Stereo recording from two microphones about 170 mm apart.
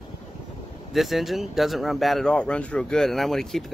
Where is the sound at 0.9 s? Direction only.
Centre (ahead or behind).